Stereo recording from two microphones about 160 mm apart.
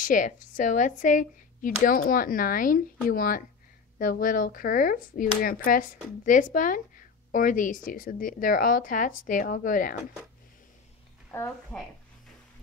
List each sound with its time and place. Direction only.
0.0 s speech: 55° left (ahead or behind)
11.3 s a woman's voice: 5° left (ahead or behind)